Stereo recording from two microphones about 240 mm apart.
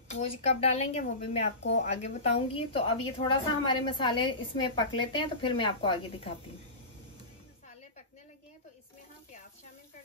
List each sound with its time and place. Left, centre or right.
0.4 s a woman's voice: left